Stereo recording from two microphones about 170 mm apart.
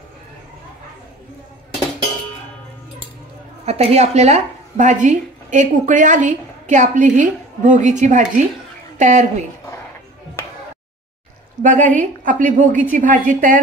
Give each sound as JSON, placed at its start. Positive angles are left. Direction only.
{"t": 3.6, "sound": "a woman's voice", "side_deg": -40}
{"t": 11.6, "sound": "speech", "side_deg": -50}